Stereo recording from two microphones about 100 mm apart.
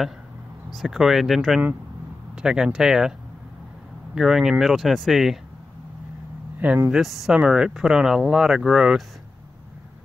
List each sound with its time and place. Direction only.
0.7 s speech: 5° right (ahead or behind)
6.9 s speech: centre (ahead or behind)